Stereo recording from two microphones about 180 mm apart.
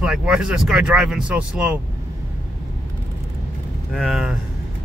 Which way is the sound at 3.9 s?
Centre (ahead or behind).